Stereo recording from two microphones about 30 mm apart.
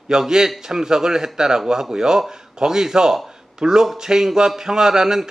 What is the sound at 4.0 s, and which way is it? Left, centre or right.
A man's voice, centre.